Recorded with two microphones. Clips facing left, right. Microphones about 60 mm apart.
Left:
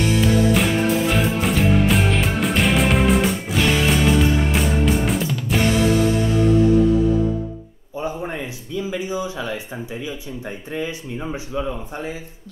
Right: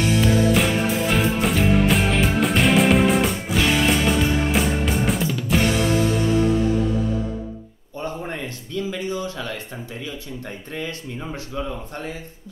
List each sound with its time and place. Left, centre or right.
0.0 s music: centre
8.0 s a sound: centre
10.7 s speech: centre